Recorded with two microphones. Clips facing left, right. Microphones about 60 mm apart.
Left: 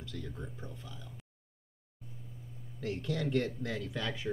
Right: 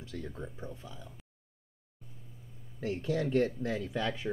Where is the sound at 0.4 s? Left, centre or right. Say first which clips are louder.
Right 3 dB; centre.